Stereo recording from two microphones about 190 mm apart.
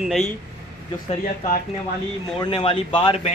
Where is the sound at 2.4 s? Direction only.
25° left (ahead or behind).